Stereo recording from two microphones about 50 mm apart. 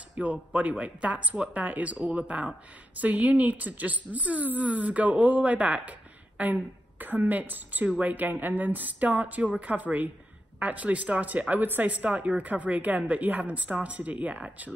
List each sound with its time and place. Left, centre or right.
0.2 s speech: right